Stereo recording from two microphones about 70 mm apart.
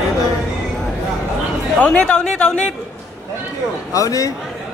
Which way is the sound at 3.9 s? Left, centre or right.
Left.